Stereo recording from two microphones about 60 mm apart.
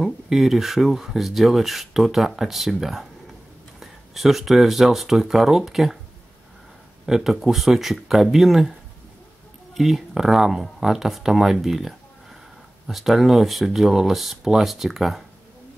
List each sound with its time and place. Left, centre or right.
0.0 s speech: centre
7.1 s speech: centre
9.8 s speech: centre